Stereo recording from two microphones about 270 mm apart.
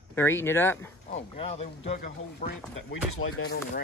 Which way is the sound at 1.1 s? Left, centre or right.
Left.